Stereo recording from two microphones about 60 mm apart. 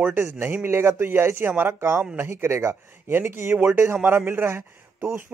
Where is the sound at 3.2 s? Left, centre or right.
Right.